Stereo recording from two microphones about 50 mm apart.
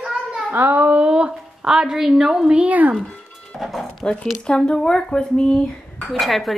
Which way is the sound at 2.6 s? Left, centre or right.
Right.